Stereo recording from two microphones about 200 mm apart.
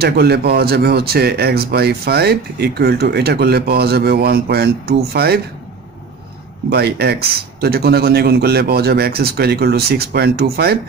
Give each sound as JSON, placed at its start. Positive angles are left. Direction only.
{"t": 0.0, "sound": "speech", "side_deg": -55}
{"t": 6.7, "sound": "speech", "side_deg": -55}